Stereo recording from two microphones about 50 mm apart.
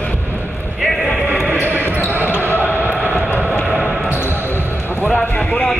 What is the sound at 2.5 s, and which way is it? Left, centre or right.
Basketball bounce, left.